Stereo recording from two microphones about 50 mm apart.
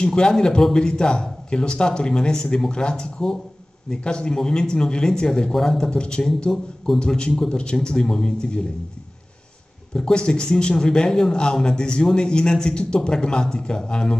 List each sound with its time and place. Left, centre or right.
0.0 s speech: centre
9.9 s speech: centre